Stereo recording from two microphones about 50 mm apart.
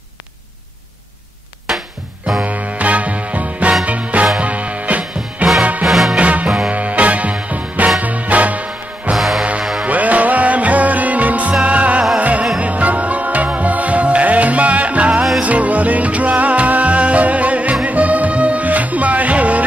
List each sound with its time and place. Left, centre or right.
1.7 s music: centre
2.4 s music: right
5.9 s music: centre
6.1 s music: right
9.1 s music: centre
9.4 s music: right